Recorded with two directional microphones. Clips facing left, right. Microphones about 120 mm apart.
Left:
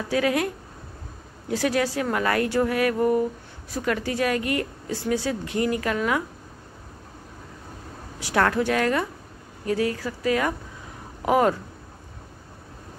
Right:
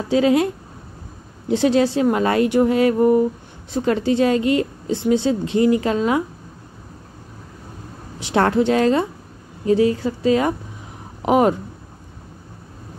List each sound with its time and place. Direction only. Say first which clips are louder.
0.1 s a woman's voice: right 7 dB; 25° right (ahead or behind)
1.5 s a woman's voice: right 7 dB; 25° right (ahead or behind)
8.2 s a woman's voice: right 5 dB; 25° right (ahead or behind)